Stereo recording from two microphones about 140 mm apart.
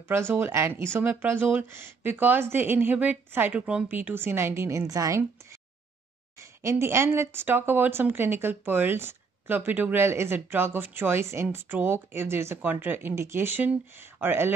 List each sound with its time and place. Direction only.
0.1 s speech: 15° right (ahead or behind)